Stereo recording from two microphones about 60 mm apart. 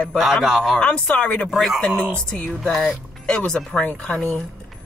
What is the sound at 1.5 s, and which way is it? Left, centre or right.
Speech, centre.